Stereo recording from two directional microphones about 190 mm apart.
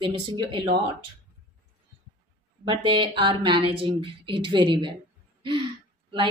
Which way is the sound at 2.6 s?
25° right (ahead or behind).